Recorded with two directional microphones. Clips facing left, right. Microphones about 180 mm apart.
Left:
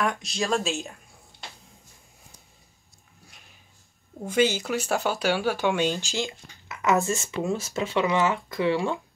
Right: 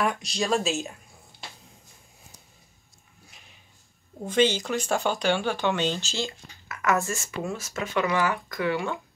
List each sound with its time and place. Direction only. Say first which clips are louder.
0.0 s speech: even; centre (ahead or behind)
1.3 s a sound: even; centre (ahead or behind)
4.2 s speech: even; 10° left (ahead or behind); by 9.0 s 30° left (ahead or behind)